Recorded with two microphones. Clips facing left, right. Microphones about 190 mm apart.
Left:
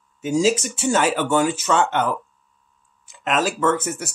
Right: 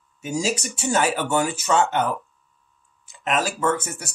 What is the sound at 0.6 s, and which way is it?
Speech, 15° right (ahead or behind).